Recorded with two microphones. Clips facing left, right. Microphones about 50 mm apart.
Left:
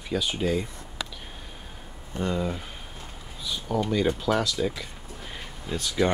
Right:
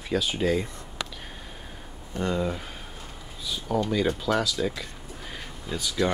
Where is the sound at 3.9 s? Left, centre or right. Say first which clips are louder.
Left 2 dB; centre.